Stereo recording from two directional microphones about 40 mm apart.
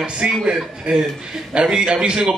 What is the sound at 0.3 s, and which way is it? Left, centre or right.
A man's voice, centre.